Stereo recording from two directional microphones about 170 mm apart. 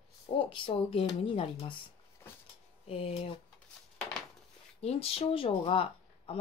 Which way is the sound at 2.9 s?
35° left (ahead or behind).